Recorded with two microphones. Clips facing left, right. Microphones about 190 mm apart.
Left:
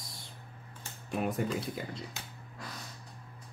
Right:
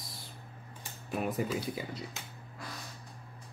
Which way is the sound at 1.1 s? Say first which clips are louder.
Left 1 dB; centre (ahead or behind).